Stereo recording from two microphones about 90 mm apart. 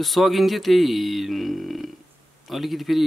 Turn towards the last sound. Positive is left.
turn(degrees=0)  # may be behind; listen again after turning